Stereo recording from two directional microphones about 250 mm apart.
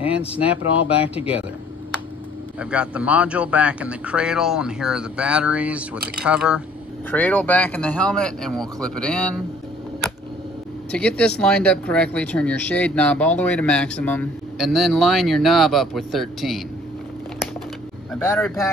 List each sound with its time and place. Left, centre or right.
0.0 s speech: left
2.6 s speech: centre
7.1 s speech: centre
10.9 s speech: centre
18.2 s speech: centre